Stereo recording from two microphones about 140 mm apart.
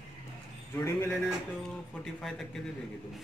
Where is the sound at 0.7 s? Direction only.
15° left (ahead or behind).